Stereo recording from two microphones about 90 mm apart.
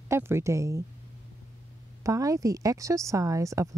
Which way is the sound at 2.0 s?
40° right (ahead or behind).